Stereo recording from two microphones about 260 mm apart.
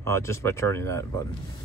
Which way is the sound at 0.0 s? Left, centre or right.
Centre.